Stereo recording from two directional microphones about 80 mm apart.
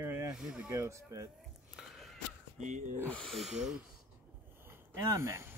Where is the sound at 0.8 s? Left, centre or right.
Right.